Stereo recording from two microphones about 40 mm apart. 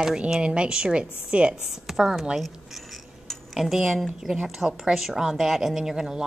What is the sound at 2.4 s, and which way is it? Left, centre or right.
Cutlery, centre.